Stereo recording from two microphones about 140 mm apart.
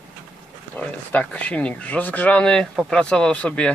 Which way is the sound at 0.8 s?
10° left (ahead or behind).